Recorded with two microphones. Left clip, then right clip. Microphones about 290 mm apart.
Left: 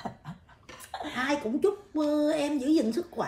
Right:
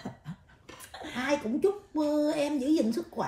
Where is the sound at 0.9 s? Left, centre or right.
Left.